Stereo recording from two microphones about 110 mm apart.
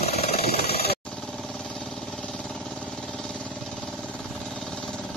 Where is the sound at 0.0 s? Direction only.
70° left (ahead or behind).